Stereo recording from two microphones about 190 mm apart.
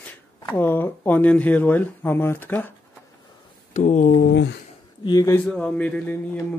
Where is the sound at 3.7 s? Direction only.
40° left (ahead or behind).